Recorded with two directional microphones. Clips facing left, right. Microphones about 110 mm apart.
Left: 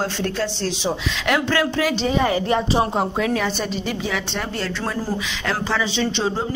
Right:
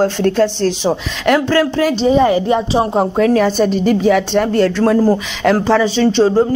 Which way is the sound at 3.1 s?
45° right (ahead or behind).